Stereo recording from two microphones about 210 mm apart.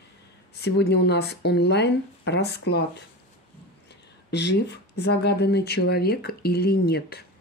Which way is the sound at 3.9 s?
55° left (ahead or behind).